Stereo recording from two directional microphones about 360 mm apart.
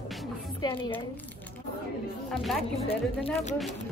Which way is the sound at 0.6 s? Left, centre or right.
Centre.